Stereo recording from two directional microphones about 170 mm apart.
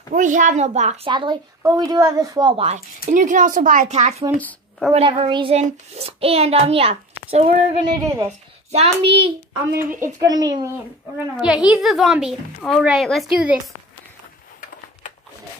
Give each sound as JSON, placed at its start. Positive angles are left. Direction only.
{"t": 0.1, "sound": "a child's voice", "side_deg": -50}
{"t": 3.1, "sound": "speech", "side_deg": -50}
{"t": 4.4, "sound": "a sound", "side_deg": 10}
{"t": 4.9, "sound": "a child's voice", "side_deg": -35}
{"t": 9.8, "sound": "a woman's voice", "side_deg": -15}
{"t": 11.4, "sound": "a woman's voice", "side_deg": -5}